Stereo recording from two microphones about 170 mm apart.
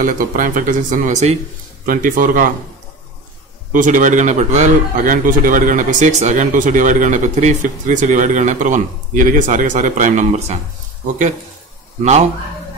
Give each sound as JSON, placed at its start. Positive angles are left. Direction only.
{"t": 0.0, "sound": "a man's voice", "side_deg": -55}
{"t": 1.9, "sound": "speech", "side_deg": -55}
{"t": 3.7, "sound": "a man's voice", "side_deg": -50}